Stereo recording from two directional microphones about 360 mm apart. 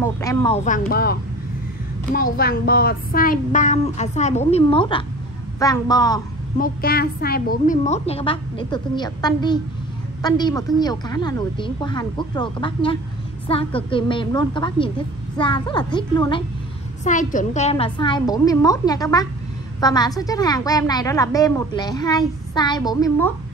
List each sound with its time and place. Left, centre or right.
0.0 s a woman's voice: centre; by 1.1 s left
2.1 s a woman's voice: left
6.6 s a woman's voice: left; by 23.3 s centre